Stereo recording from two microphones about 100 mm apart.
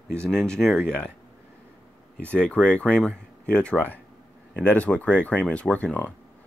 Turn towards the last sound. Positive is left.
turn(degrees=15)  # may be behind; listen again after turning